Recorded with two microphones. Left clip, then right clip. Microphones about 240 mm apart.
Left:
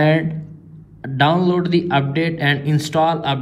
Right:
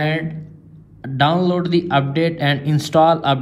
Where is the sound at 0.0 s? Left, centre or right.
Centre.